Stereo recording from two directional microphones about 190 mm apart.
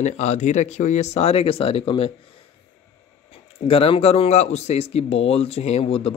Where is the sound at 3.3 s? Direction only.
30° left (ahead or behind).